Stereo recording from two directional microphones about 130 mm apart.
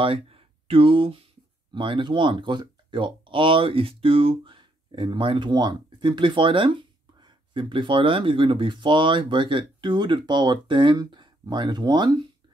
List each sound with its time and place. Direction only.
0.0 s speech: 45° right (ahead or behind)